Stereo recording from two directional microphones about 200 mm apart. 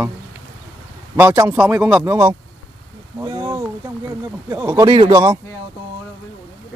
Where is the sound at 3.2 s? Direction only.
15° right (ahead or behind).